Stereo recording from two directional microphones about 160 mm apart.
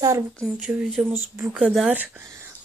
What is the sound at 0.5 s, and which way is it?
Speech, 10° right (ahead or behind).